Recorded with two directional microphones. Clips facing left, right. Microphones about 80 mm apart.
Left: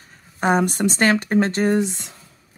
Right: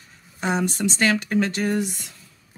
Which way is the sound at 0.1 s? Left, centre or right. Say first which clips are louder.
Left 6 dB; left.